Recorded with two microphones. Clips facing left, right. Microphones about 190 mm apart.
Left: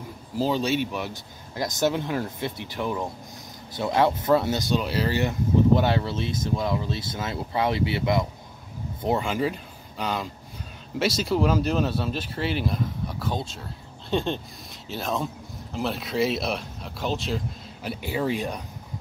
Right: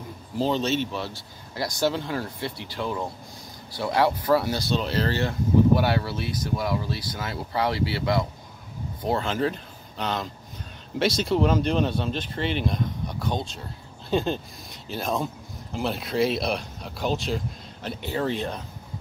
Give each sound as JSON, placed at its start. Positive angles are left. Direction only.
{"t": 0.4, "sound": "speech", "side_deg": 10}
{"t": 5.8, "sound": "speech", "side_deg": 20}